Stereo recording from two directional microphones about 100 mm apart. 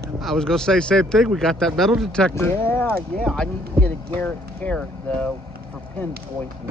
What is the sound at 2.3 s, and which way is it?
Speech, 20° left (ahead or behind).